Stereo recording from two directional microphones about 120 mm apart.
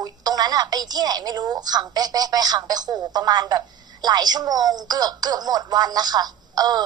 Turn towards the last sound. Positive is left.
turn(degrees=-35)  # may be behind; listen again after turning